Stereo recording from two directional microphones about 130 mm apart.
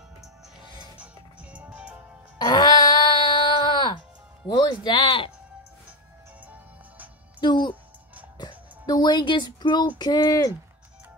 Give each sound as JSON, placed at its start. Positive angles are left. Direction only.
{"t": 0.9, "sound": "music", "side_deg": -10}
{"t": 2.3, "sound": "a sound", "side_deg": 30}
{"t": 4.5, "sound": "speech", "side_deg": 35}
{"t": 6.4, "sound": "music", "side_deg": -10}
{"t": 7.3, "sound": "music", "side_deg": 35}
{"t": 9.9, "sound": "speech", "side_deg": 30}